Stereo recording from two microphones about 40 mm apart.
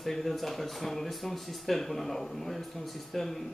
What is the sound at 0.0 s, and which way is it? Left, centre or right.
Speech, centre.